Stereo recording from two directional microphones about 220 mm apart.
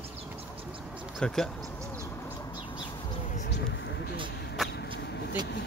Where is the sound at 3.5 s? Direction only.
50° left (ahead or behind).